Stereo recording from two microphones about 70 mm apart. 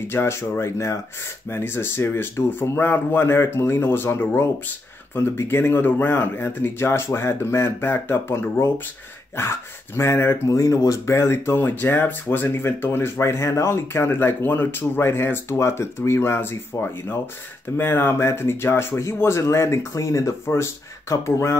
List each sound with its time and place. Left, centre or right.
0.1 s speech: left
10.5 s speech: left
11.1 s speech: left